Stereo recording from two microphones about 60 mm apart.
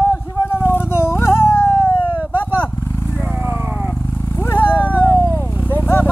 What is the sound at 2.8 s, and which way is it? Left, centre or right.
Vehicle, left.